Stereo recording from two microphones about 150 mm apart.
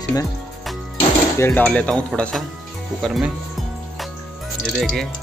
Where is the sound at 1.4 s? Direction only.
15° left (ahead or behind).